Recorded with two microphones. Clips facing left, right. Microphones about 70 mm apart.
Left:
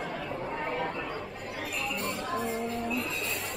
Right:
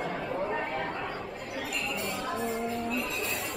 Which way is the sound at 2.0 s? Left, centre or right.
Centre.